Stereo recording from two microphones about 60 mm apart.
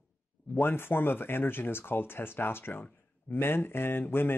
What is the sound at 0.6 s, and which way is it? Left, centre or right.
Speech, left.